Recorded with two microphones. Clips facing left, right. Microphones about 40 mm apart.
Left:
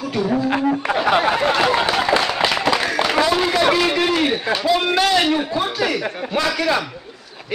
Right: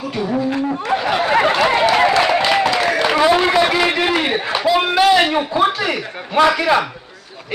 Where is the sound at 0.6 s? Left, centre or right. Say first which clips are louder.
Even; left.